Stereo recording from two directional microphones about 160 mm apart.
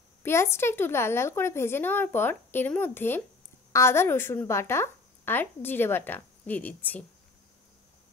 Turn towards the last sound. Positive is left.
turn(degrees=10)  # may be behind; listen again after turning